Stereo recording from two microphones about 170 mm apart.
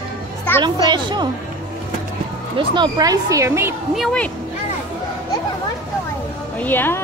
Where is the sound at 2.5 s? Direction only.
30° right (ahead or behind).